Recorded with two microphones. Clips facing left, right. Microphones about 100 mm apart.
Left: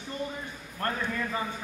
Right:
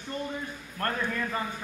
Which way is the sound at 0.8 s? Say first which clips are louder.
Even; 20° left (ahead or behind).